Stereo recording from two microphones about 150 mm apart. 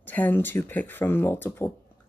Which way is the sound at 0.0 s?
10° left (ahead or behind).